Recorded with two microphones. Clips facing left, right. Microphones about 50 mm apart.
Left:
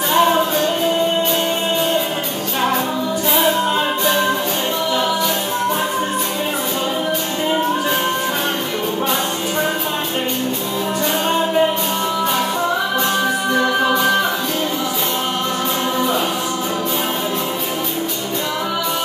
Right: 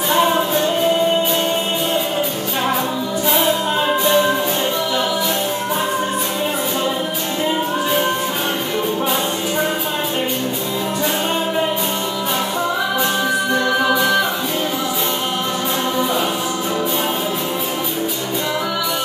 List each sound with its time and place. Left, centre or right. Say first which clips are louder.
0.1 s music: left 1 dB; centre
13.6 s music: left 2 dB; centre